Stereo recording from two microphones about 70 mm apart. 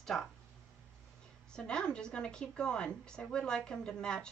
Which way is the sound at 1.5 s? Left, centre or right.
Centre.